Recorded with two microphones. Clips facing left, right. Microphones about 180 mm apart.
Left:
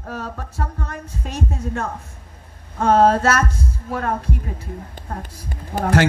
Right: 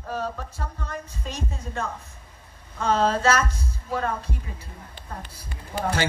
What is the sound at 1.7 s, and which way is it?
A woman's voice, 45° left (ahead or behind).